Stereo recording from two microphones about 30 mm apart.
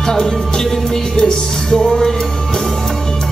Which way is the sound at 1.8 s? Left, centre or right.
Centre.